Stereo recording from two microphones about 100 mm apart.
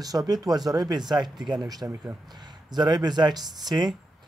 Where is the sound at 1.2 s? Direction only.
Centre (ahead or behind).